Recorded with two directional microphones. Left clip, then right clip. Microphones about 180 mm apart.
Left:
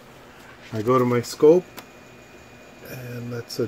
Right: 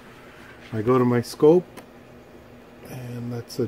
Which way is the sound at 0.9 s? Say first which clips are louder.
Left 1 dB; 5° right (ahead or behind).